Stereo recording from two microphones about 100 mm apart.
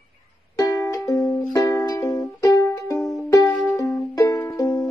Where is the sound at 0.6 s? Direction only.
35° left (ahead or behind).